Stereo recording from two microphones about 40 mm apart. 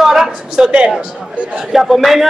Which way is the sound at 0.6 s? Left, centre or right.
Right.